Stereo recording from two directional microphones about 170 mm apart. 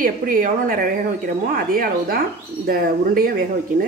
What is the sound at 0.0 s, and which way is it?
Speech, 55° right (ahead or behind).